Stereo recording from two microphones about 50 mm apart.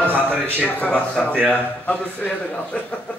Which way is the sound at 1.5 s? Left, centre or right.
Left.